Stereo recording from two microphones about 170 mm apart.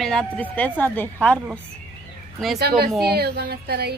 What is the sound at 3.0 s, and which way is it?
Speech, 70° right (ahead or behind).